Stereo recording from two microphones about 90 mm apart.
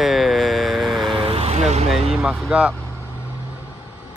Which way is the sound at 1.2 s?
90° right.